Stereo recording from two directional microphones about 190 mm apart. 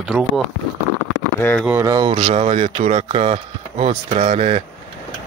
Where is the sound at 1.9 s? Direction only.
25° right (ahead or behind).